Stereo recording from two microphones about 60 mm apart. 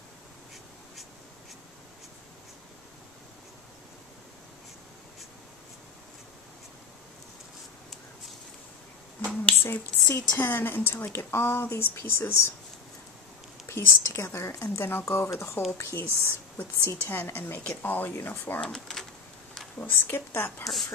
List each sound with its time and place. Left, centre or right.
9.6 s speech: left
13.7 s a woman's voice: left
17.2 s speech: left
18.6 s speech: centre
19.8 s speech: left